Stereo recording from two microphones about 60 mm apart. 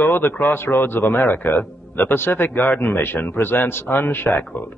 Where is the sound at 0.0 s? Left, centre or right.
Left.